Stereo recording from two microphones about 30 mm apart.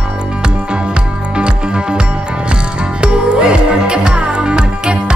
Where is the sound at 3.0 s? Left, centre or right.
Right.